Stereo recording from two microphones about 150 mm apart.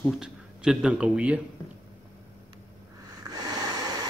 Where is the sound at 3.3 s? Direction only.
25° right (ahead or behind).